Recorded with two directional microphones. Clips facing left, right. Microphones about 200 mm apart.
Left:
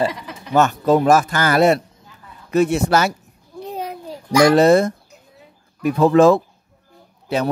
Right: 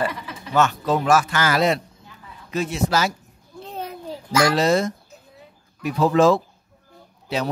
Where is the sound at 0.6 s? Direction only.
40° left (ahead or behind).